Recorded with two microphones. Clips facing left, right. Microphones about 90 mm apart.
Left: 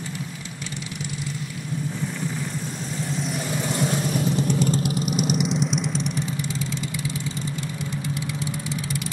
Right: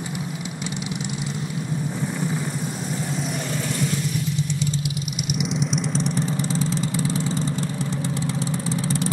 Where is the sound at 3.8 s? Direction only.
45° left (ahead or behind).